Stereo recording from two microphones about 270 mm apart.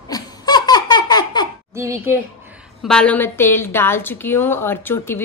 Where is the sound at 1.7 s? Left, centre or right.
Centre.